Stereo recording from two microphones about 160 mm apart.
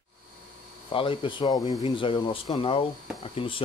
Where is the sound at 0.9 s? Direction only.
30° left (ahead or behind).